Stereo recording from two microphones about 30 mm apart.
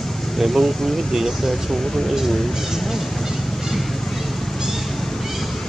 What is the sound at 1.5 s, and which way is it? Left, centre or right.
Speech, centre.